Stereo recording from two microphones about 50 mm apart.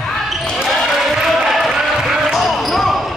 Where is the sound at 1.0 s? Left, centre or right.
Centre.